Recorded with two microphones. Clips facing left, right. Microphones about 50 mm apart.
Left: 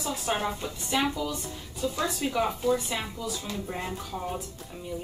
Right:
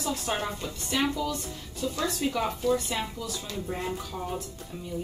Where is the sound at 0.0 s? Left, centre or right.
Centre.